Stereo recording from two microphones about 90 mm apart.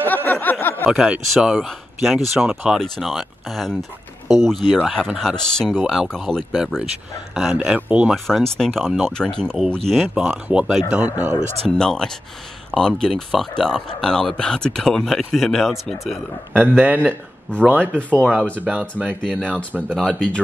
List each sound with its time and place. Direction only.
0.0 s a sound: 20° left (ahead or behind)
0.9 s speech: 10° right (ahead or behind)
8.1 s speech: 5° left (ahead or behind)
10.5 s speech: 10° right (ahead or behind)
11.6 s speech: 5° left (ahead or behind)
16.8 s speech: 20° right (ahead or behind)
17.5 s speech: 15° left (ahead or behind)
18.7 s speech: 15° right (ahead or behind)
19.0 s speech: 10° left (ahead or behind)